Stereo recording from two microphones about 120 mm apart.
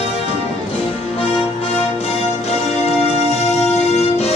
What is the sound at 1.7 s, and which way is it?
Music, 60° left (ahead or behind).